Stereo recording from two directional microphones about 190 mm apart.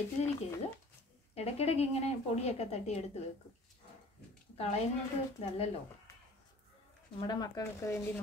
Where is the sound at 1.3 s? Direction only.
35° left (ahead or behind).